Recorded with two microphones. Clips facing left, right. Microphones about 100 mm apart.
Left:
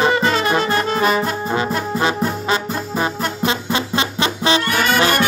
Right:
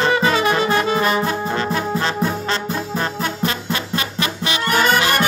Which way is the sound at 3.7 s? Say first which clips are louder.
Left 3 dB; 25° left (ahead or behind).